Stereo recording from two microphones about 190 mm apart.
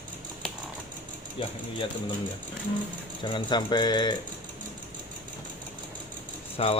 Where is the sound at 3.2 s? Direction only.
25° left (ahead or behind).